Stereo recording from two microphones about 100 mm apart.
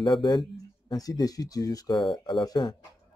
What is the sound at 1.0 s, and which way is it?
Speech, 40° left (ahead or behind).